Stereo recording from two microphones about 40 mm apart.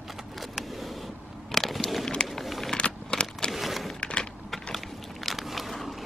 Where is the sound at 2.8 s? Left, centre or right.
Left.